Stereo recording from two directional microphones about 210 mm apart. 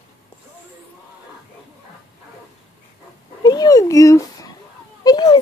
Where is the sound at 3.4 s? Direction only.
20° left (ahead or behind).